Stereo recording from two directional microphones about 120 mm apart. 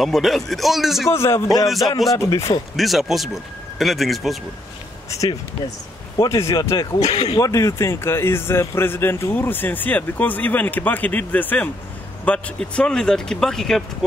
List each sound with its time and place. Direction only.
0.0 s speech: centre (ahead or behind)
1.1 s speech: 20° left (ahead or behind)
2.7 s speech: centre (ahead or behind)
6.1 s speech: 25° left (ahead or behind)
7.1 s speech: 55° left (ahead or behind)
7.3 s speech: 25° left (ahead or behind); by 13.8 s 5° left (ahead or behind)